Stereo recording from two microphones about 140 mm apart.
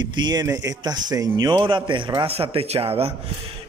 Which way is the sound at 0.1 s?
30° right (ahead or behind).